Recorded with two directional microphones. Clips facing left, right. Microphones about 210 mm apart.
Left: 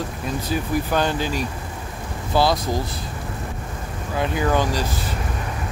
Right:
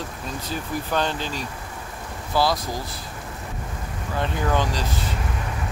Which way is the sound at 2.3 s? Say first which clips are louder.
Left 3 dB; 25° left (ahead or behind).